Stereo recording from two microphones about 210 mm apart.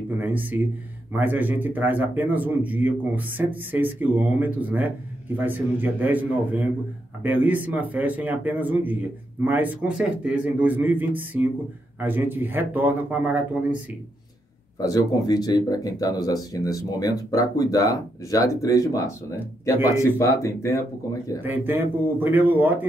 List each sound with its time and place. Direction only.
0.2 s speech: 10° right (ahead or behind)
14.8 s speech: 20° left (ahead or behind)
20.2 s speech: 15° left (ahead or behind)
21.4 s speech: 10° right (ahead or behind)